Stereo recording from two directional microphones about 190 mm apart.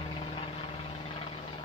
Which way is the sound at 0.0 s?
30° left (ahead or behind).